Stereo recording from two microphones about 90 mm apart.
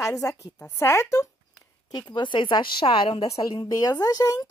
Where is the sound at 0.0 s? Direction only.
35° left (ahead or behind).